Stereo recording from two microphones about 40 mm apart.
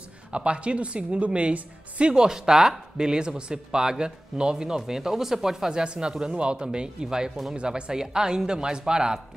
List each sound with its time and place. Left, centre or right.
0.3 s speech: right